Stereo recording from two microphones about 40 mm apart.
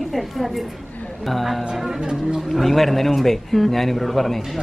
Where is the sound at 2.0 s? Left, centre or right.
Centre.